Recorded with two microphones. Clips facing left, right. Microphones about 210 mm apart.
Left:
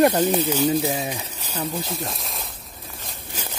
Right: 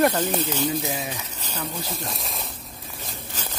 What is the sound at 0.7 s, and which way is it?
Speech, 30° left (ahead or behind).